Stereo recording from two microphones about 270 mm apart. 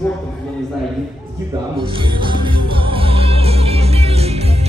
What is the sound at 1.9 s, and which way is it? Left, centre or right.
Music, centre.